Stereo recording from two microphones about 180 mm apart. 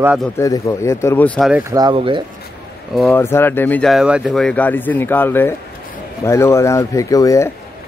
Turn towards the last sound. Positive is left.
turn(degrees=15)  # may be behind; listen again after turning